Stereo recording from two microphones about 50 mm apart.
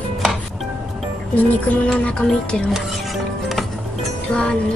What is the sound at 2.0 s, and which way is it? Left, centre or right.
Music, centre.